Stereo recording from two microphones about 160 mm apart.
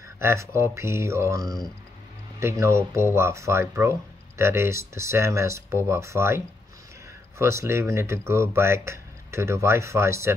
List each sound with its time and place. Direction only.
0.2 s speech: 15° right (ahead or behind)